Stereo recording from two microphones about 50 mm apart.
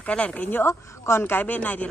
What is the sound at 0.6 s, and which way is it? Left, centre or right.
Speech, left.